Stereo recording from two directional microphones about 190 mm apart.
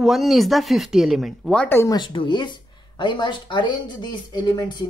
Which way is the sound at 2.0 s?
25° left (ahead or behind).